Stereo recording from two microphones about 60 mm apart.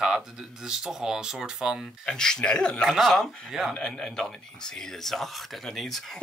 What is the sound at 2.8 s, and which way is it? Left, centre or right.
Speech, centre.